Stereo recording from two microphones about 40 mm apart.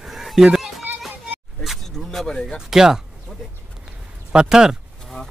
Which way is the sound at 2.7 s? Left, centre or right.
Centre.